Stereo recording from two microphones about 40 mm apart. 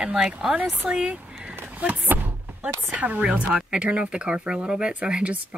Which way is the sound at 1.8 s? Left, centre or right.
Right.